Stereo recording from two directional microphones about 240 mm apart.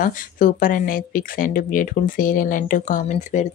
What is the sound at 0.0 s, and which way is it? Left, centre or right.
Speech, left.